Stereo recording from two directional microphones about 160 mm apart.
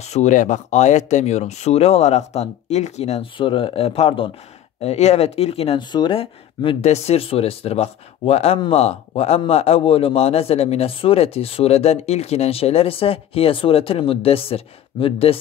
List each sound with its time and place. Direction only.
0.0 s a man's voice: 45° left (ahead or behind)